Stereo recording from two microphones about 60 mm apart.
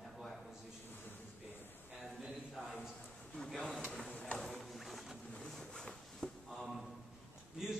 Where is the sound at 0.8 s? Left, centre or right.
Left.